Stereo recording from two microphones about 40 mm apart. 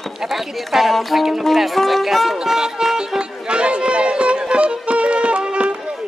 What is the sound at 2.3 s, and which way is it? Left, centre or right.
Music, centre.